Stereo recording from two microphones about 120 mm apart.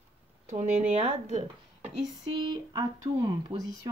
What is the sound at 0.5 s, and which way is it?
Speech, 80° right.